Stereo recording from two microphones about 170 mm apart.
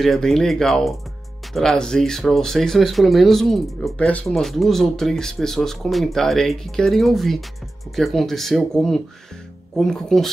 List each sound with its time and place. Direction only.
0.0 s speech: centre (ahead or behind)